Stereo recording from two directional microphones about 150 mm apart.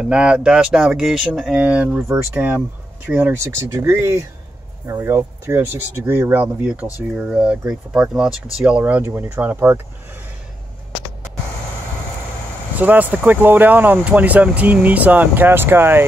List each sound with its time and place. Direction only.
0.0 s speech: 5° right (ahead or behind)
12.7 s speech: 10° right (ahead or behind)